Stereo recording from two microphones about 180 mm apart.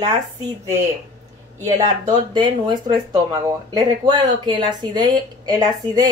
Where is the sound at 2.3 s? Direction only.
25° right (ahead or behind).